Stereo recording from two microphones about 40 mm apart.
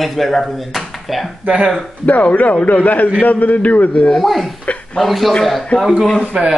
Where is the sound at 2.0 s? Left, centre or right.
Left.